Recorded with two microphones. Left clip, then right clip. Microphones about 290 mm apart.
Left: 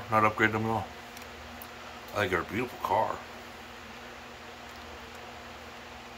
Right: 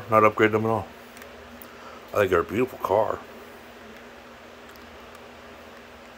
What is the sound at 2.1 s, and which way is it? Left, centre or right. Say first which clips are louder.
Speech: right 8 dB; right.